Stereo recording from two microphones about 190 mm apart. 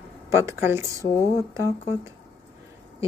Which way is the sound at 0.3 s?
15° right (ahead or behind).